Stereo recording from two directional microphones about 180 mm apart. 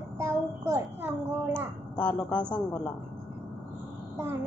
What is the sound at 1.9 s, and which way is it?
Speech, 5° left (ahead or behind).